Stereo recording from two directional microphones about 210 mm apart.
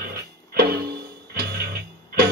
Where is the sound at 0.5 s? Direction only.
50° right (ahead or behind).